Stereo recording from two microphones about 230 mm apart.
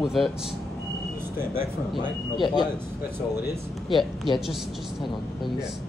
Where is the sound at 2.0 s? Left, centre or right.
Centre.